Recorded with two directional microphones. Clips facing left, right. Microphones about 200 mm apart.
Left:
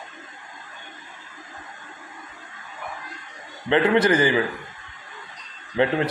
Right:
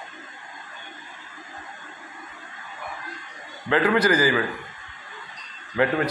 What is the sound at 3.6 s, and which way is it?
Speech, 25° left (ahead or behind).